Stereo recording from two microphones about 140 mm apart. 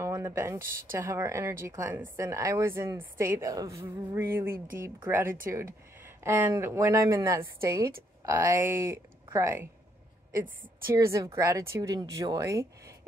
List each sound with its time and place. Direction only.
0.0 s speech: 20° right (ahead or behind)